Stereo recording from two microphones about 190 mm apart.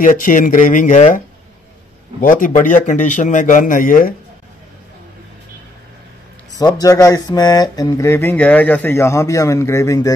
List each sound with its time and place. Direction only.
0.0 s speech: 45° left (ahead or behind)
6.6 s speech: 20° left (ahead or behind)